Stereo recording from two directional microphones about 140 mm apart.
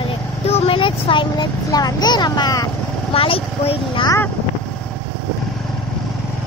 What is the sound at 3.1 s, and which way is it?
Speech, 40° left (ahead or behind).